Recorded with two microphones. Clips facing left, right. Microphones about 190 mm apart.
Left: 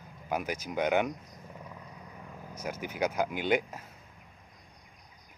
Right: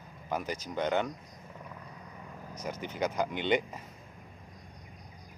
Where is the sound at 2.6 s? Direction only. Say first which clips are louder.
Left 1 dB; 10° left (ahead or behind).